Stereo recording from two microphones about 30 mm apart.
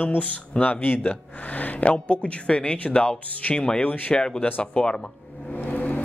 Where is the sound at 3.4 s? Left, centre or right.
Left.